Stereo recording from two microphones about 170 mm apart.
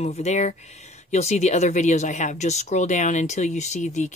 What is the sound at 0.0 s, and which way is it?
Speech, 40° left (ahead or behind).